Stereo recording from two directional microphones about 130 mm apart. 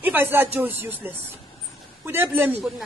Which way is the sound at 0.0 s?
15° right (ahead or behind).